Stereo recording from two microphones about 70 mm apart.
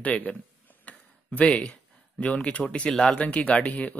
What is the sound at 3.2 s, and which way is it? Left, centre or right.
Speech, centre.